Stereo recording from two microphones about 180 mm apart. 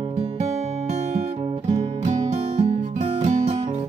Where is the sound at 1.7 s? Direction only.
40° right (ahead or behind).